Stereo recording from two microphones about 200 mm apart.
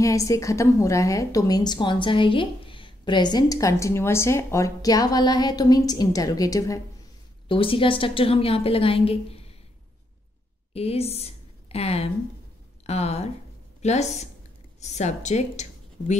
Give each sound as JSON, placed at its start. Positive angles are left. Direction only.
{"t": 0.0, "sound": "a woman's voice", "side_deg": 15}
{"t": 10.7, "sound": "a woman's voice", "side_deg": 30}